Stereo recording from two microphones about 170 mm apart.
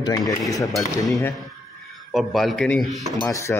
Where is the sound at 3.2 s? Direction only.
15° left (ahead or behind).